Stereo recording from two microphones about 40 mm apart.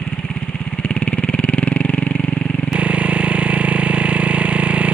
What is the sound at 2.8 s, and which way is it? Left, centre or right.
Vehicle, right.